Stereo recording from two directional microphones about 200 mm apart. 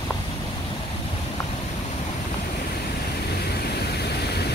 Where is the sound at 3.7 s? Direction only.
55° left (ahead or behind).